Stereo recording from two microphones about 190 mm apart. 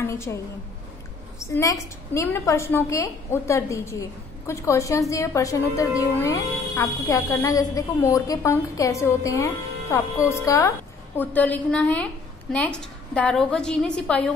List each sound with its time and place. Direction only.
0.0 s a woman's voice: 15° left (ahead or behind)
1.4 s a woman's voice: 15° left (ahead or behind)